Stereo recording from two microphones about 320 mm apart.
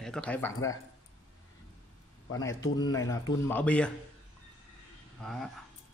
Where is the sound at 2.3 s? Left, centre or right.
Centre.